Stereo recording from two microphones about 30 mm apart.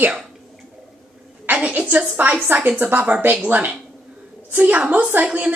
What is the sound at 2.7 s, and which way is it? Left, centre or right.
A woman's voice, right.